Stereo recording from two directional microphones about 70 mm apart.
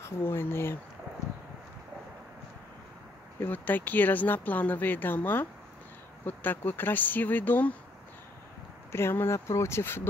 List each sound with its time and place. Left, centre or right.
0.0 s speech: left
3.3 s speech: left
8.9 s speech: left